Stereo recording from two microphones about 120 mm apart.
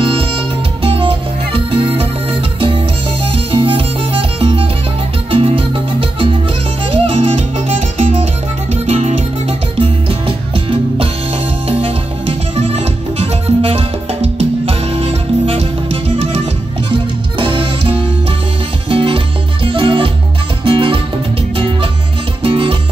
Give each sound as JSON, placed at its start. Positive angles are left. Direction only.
{"t": 0.0, "sound": "music", "side_deg": -50}
{"t": 3.3, "sound": "music", "side_deg": -50}
{"t": 16.9, "sound": "music", "side_deg": -45}
{"t": 22.4, "sound": "music", "side_deg": -50}